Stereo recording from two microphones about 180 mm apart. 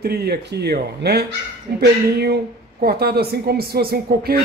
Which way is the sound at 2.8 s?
60° right (ahead or behind).